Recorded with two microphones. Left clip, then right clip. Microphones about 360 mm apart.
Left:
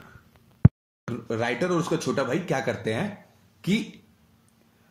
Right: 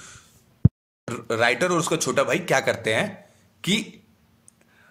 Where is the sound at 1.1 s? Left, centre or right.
Right.